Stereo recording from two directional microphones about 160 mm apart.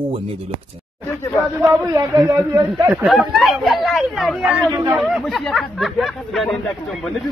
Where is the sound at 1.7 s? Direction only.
20° right (ahead or behind).